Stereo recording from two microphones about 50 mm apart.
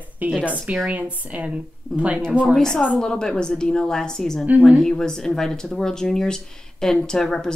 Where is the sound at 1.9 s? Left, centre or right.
Centre.